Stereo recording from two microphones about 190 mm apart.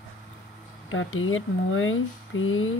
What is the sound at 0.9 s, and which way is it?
Speech, 90° left.